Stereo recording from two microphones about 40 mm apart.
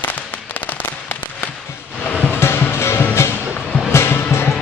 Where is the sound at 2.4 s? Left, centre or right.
Left.